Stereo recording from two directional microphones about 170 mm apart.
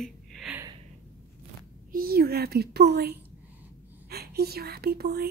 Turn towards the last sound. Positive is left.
turn(degrees=-65)  # may be behind; listen again after turning